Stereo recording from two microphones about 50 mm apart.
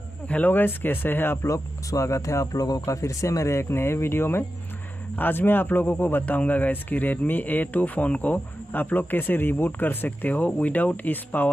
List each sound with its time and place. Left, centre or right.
0.3 s speech: left
1.4 s speech: left
5.1 s a man's voice: left
6.2 s speech: left